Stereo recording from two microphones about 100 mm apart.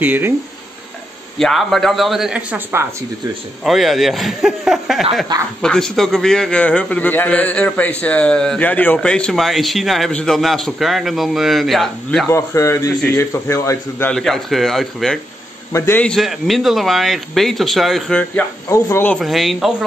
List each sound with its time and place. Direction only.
0.0 s speech: 20° right (ahead or behind)
1.4 s a man's voice: centre (ahead or behind)
3.6 s a man's voice: centre (ahead or behind)
12.3 s a man's voice: 30° left (ahead or behind)
14.1 s a man's voice: 5° left (ahead or behind)
15.7 s a man's voice: 30° left (ahead or behind)
16.0 s a man's voice: 5° left (ahead or behind)
18.7 s a man's voice: 30° left (ahead or behind)
19.1 s a man's voice: centre (ahead or behind)